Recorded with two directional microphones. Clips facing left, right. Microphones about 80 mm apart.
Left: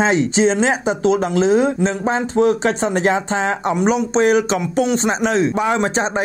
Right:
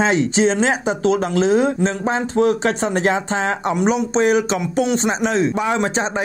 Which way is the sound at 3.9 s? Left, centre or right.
Left.